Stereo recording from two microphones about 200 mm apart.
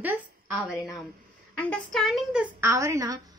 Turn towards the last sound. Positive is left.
turn(degrees=-15)  # may be behind; listen again after turning